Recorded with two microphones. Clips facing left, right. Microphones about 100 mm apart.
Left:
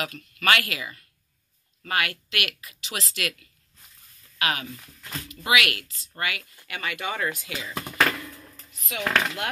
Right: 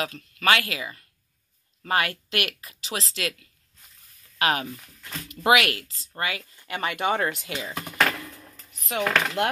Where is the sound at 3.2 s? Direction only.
25° right (ahead or behind).